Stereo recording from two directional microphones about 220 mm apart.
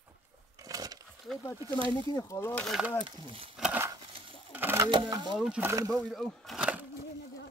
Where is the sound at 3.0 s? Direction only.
25° right (ahead or behind).